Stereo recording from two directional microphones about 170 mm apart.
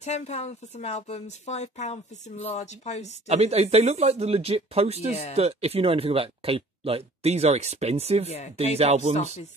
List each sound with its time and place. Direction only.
0.0 s a woman's voice: 40° left (ahead or behind)
3.3 s speech: 40° right (ahead or behind)